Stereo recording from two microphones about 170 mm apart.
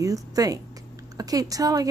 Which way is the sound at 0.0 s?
20° right (ahead or behind).